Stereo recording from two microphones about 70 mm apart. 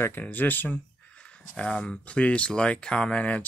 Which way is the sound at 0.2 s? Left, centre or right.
Left.